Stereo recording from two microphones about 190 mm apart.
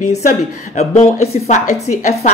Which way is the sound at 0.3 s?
35° left (ahead or behind).